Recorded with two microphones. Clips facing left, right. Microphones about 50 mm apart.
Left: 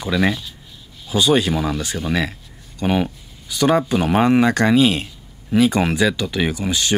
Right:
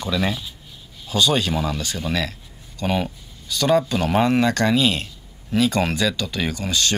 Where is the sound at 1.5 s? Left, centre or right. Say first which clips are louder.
Left 3 dB; centre.